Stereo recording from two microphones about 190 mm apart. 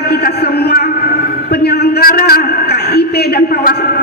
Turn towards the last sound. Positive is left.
turn(degrees=50)  # may be behind; listen again after turning